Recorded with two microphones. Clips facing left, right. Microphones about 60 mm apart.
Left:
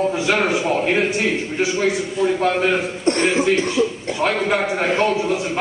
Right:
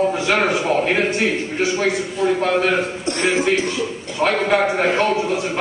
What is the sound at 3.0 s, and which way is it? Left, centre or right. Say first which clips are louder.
Speech: left 2 dB; left.